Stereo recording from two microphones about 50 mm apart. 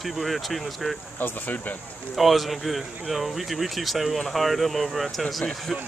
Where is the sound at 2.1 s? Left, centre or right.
Centre.